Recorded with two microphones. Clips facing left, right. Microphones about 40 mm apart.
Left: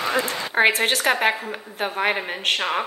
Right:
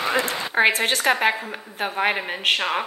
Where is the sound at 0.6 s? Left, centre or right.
Centre.